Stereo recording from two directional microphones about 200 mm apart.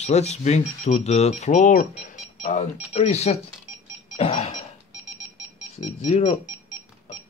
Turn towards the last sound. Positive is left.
turn(degrees=35)  # may be behind; listen again after turning